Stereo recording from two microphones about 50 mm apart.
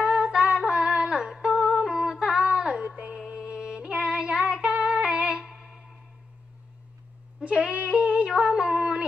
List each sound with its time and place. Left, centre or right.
0.0 s humming: right
0.6 s a sound: centre
1.4 s humming: centre
2.5 s child singing: centre
3.2 s music: centre
7.3 s a sound: centre